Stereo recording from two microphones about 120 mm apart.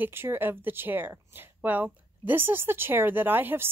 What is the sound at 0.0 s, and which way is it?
Speech, 20° right (ahead or behind).